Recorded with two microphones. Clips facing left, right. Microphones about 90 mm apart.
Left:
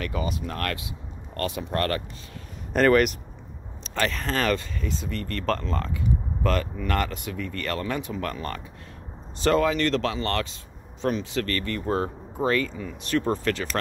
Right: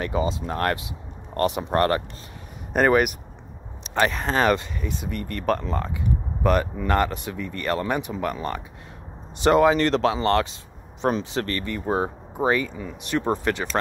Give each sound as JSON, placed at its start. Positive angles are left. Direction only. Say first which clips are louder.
{"t": 0.0, "sound": "speech", "louder": "right 4 dB", "side_deg": -25}
{"t": 2.7, "sound": "speech", "louder": "even", "side_deg": -10}
{"t": 3.8, "sound": "speech", "louder": "right 4 dB", "side_deg": -20}